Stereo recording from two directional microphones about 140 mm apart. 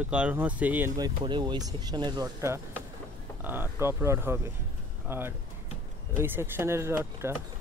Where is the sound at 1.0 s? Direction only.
35° right (ahead or behind); by 7.3 s 20° right (ahead or behind).